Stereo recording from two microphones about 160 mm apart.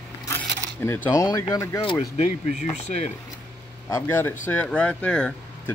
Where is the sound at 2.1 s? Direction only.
45° left (ahead or behind).